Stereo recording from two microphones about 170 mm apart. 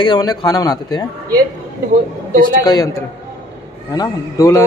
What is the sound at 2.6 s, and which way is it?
Speech, 20° left (ahead or behind).